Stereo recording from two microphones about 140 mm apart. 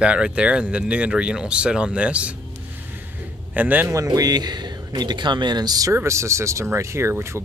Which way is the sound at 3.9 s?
25° right (ahead or behind).